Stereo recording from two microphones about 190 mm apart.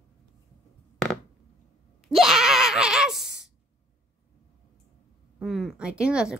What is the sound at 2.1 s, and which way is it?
Groan, centre (ahead or behind).